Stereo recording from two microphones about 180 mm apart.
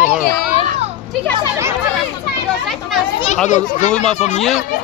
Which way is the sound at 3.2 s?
40° left (ahead or behind).